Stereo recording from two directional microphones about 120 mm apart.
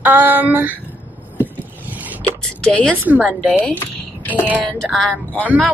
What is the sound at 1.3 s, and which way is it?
Vehicle, 15° right (ahead or behind).